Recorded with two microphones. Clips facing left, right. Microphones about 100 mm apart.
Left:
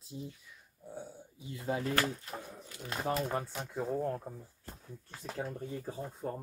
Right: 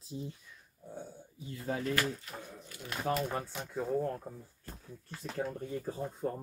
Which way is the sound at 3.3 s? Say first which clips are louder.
Left 1 dB; 10° left (ahead or behind).